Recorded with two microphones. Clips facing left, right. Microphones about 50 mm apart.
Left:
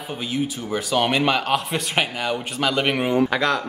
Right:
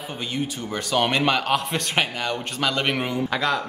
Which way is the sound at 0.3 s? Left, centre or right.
Centre.